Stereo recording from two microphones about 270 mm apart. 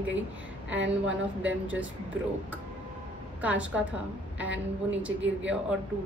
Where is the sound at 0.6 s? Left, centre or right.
Right.